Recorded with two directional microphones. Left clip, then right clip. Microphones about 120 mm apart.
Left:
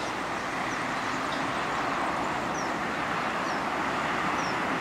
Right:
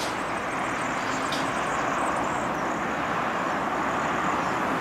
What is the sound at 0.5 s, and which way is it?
Vehicle, 10° right (ahead or behind).